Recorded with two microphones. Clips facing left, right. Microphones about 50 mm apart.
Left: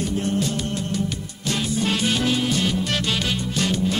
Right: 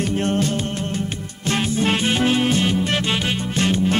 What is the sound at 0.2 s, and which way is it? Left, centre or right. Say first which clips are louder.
Music: right 4 dB; right.